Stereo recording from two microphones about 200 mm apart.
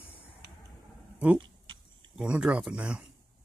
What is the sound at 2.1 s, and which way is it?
Speech, 5° right (ahead or behind).